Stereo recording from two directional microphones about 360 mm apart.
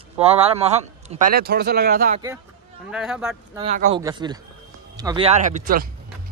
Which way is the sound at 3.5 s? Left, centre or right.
Centre.